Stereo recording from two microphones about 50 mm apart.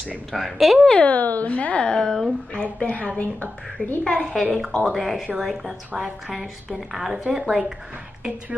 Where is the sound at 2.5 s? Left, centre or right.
Left.